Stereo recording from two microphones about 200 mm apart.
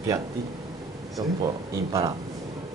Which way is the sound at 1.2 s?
20° right (ahead or behind).